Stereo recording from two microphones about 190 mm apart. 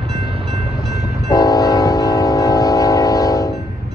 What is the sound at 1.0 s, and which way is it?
Train, 20° left (ahead or behind).